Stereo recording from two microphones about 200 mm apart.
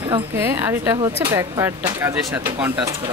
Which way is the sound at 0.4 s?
10° right (ahead or behind).